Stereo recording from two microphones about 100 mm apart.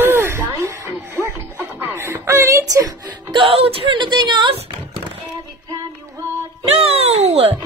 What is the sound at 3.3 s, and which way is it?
Speech, 65° right (ahead or behind).